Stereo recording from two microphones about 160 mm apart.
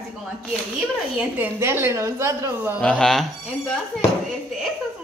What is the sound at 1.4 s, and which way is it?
A woman's voice, 15° right (ahead or behind).